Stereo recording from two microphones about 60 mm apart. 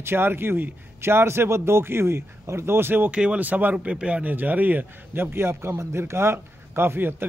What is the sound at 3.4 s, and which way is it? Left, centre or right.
A man's voice, right.